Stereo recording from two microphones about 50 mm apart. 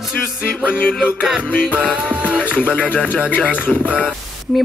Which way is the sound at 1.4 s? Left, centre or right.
Left.